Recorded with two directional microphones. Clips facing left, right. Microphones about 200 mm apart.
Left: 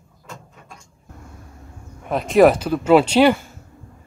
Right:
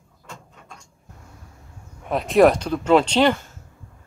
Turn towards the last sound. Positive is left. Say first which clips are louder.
# left 4 dB
turn(degrees=10)  # may be behind; listen again after turning